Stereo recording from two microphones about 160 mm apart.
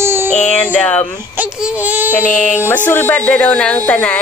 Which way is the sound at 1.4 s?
10° right (ahead or behind).